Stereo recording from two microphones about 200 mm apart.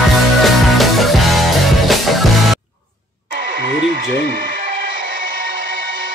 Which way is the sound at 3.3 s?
45° right (ahead or behind).